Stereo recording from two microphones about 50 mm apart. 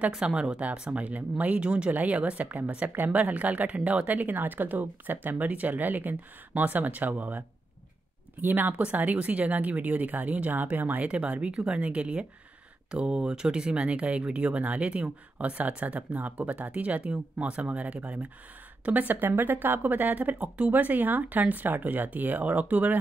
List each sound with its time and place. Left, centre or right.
0.1 s speech: centre
1.9 s a woman's voice: right
11.1 s a woman's voice: right